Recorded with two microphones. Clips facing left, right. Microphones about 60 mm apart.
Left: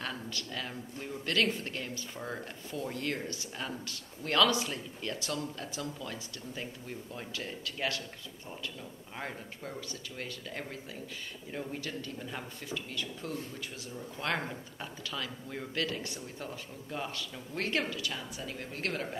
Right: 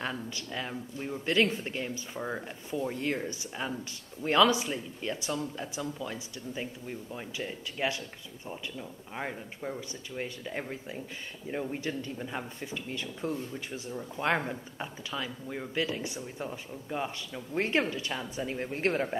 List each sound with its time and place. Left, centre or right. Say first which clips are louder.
0.0 s speech: right 3 dB; right